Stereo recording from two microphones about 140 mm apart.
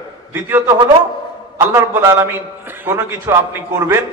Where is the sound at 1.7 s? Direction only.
20° right (ahead or behind).